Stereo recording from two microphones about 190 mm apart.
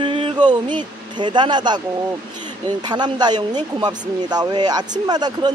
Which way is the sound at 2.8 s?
20° right (ahead or behind).